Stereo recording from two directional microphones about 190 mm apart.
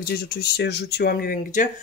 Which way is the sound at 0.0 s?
55° left (ahead or behind).